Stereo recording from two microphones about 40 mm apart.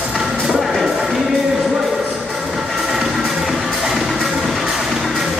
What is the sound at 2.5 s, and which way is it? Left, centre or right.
Train, centre.